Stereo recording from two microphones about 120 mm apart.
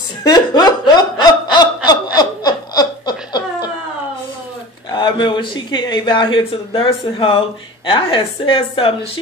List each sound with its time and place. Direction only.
0.2 s laughter: 35° left (ahead or behind)
4.9 s a man's voice: 40° left (ahead or behind)